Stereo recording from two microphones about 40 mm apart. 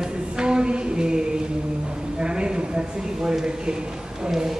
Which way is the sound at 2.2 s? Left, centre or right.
Right.